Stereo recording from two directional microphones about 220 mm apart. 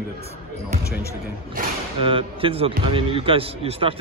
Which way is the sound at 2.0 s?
25° right (ahead or behind).